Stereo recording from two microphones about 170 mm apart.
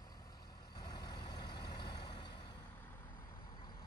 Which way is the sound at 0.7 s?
25° left (ahead or behind).